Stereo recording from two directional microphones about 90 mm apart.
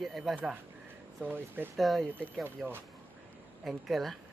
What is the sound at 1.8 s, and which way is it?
Speech, centre (ahead or behind).